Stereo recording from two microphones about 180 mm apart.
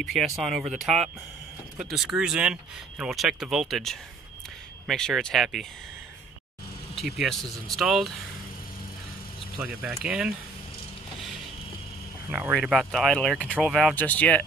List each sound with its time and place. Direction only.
0.0 s speech: centre (ahead or behind)
7.0 s speech: centre (ahead or behind)
9.6 s speech: 5° right (ahead or behind)
12.3 s speech: 10° right (ahead or behind); by 14.4 s 10° left (ahead or behind)